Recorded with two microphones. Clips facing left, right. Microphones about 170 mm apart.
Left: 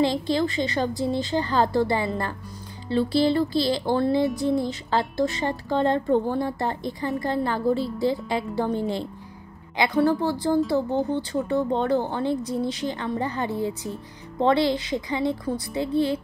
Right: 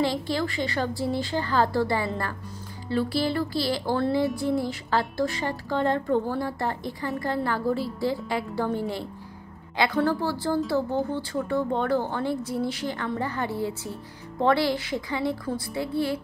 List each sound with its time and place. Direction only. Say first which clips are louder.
0.0 s a woman's voice: left 3 dB; 20° left (ahead or behind)